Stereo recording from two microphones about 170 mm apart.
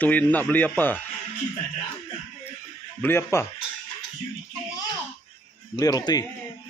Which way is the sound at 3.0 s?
15° left (ahead or behind).